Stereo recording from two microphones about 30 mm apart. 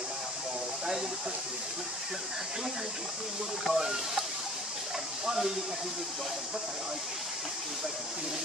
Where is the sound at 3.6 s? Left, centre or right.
Centre.